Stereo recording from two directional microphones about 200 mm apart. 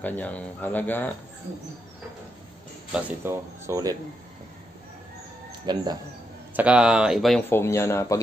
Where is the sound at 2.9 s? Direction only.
10° right (ahead or behind).